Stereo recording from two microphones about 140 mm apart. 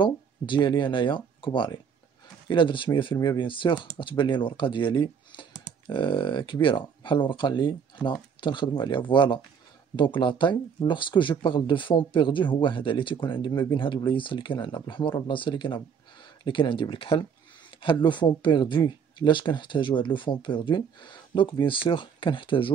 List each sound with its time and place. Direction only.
0.0 s speech: 35° left (ahead or behind)